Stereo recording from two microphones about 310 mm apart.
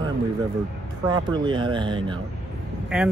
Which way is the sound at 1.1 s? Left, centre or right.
Centre.